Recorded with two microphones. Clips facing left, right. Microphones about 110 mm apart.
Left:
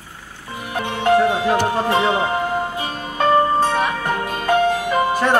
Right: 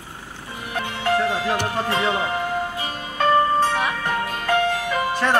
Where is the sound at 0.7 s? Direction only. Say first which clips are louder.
Left 6 dB; 25° left (ahead or behind).